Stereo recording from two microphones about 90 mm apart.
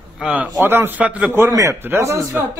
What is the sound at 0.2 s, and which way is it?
A man's voice, 15° right (ahead or behind).